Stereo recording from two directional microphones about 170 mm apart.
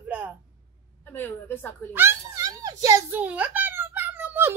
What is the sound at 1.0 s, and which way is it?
Speech, 10° left (ahead or behind).